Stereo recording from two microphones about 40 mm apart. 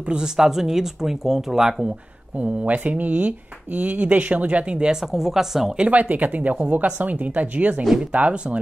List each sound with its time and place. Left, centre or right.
0.2 s speech: centre
2.3 s speech: right
5.0 s speech: centre
5.9 s speech: right